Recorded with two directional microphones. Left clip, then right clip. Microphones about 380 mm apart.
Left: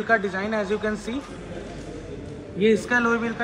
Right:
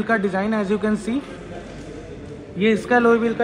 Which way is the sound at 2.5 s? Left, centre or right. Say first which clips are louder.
Right 2 dB; centre.